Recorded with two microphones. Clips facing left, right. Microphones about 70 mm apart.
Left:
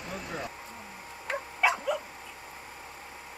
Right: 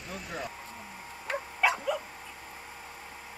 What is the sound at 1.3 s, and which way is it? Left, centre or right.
Dog, centre.